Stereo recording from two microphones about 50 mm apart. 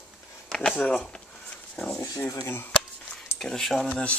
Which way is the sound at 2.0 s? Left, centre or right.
Left.